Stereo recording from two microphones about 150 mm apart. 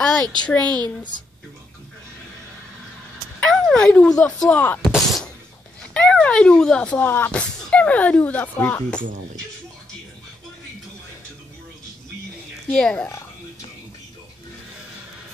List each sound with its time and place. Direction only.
0.2 s speech: 30° right (ahead or behind)
0.5 s a woman's voice: 10° left (ahead or behind)
3.3 s speech: 5° left (ahead or behind)
4.9 s a sound: centre (ahead or behind)
5.9 s speech: 5° left (ahead or behind)
12.7 s speech: 5° left (ahead or behind)